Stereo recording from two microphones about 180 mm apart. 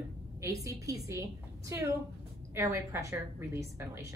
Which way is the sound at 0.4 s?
20° right (ahead or behind).